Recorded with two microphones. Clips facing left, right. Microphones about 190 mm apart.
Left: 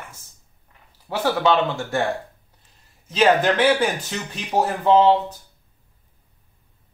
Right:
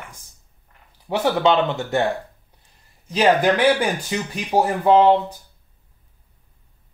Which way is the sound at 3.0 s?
10° right (ahead or behind).